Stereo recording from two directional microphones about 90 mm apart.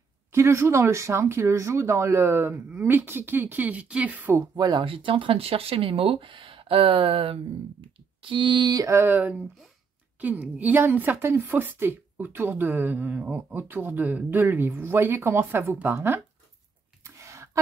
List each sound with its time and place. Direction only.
0.3 s a woman's voice: 30° right (ahead or behind)
4.4 s speech: 50° right (ahead or behind)
4.8 s speech: 80° right
7.8 s speech: 70° right (ahead or behind)
8.7 s a sound: 40° right (ahead or behind)
9.0 s a woman's voice: 25° right (ahead or behind)
17.0 s a sound: 35° right (ahead or behind)